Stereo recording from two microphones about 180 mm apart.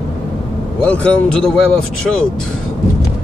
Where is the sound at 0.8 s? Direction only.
5° left (ahead or behind).